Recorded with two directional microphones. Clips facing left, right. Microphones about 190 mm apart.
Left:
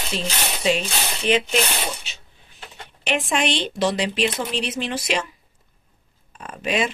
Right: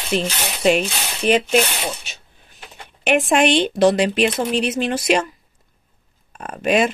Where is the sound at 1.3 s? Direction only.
45° right (ahead or behind).